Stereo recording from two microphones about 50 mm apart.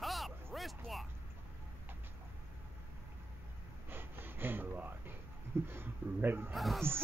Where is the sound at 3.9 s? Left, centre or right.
Right.